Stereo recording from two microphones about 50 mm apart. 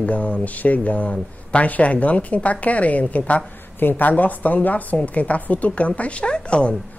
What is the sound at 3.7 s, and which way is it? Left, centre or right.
Speech, left.